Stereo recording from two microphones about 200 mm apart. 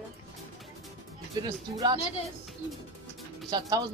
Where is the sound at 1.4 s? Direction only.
20° right (ahead or behind).